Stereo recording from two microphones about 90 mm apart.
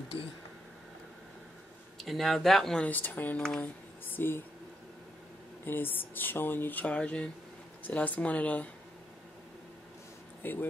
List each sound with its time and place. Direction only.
2.0 s speech: centre (ahead or behind)
2.8 s speech: 20° left (ahead or behind)
3.6 s a sound: 20° left (ahead or behind)
5.7 s speech: 20° left (ahead or behind)
10.4 s speech: 20° left (ahead or behind)